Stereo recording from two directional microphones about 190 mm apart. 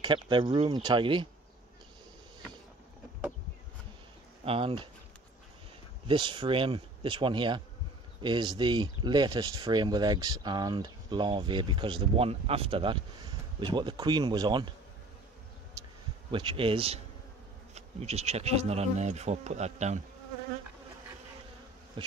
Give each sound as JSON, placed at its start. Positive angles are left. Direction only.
{"t": 0.0, "sound": "speech", "side_deg": -25}
{"t": 4.5, "sound": "speech", "side_deg": -30}
{"t": 6.0, "sound": "speech", "side_deg": -25}
{"t": 16.3, "sound": "speech", "side_deg": -30}
{"t": 22.0, "sound": "speech", "side_deg": -25}